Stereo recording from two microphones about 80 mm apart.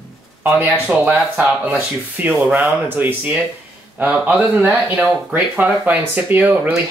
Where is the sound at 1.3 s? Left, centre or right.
Centre.